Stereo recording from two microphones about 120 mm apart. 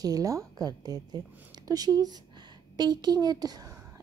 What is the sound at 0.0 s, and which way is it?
A woman's voice, 30° right (ahead or behind).